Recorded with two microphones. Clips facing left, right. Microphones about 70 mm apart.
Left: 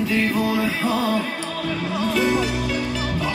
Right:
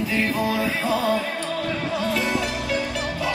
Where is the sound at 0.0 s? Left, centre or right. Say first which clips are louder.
Left 2 dB; centre.